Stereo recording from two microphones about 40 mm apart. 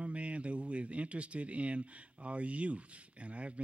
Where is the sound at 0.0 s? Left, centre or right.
Right.